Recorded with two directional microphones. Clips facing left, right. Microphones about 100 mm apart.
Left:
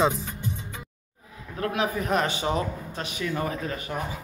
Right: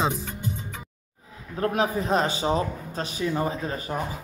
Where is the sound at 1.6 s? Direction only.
35° right (ahead or behind).